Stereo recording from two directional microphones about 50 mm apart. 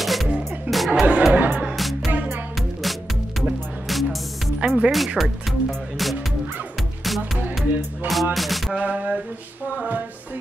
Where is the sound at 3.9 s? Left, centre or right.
Centre.